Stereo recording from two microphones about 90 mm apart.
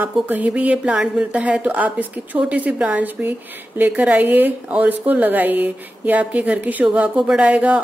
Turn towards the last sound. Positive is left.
turn(degrees=-15)  # may be behind; listen again after turning